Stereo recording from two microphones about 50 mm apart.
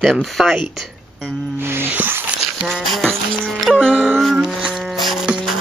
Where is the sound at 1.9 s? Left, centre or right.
Right.